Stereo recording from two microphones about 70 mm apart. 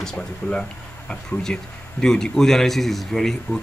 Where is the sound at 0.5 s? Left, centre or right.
Centre.